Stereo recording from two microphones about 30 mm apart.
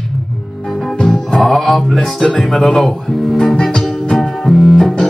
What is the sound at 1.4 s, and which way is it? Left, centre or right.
Mantra, centre.